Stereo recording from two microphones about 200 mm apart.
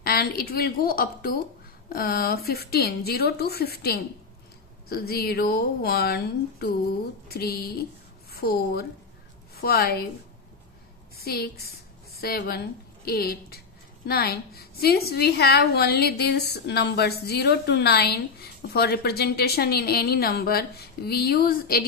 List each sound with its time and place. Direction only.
0.0 s a woman's voice: 50° left (ahead or behind)
11.1 s a woman's voice: 50° left (ahead or behind)